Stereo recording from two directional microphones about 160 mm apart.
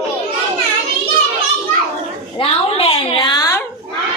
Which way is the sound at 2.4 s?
35° left (ahead or behind).